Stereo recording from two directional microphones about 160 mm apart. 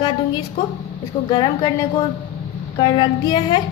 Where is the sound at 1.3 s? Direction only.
25° left (ahead or behind).